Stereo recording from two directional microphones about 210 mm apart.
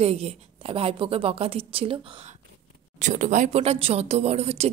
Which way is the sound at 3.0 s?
35° right (ahead or behind).